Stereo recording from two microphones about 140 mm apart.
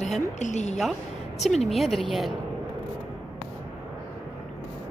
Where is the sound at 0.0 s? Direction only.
60° left (ahead or behind).